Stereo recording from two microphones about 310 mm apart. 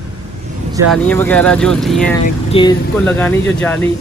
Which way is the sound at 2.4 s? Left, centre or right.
Centre.